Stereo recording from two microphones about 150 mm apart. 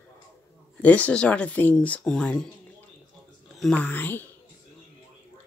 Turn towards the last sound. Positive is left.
turn(degrees=10)  # may be behind; listen again after turning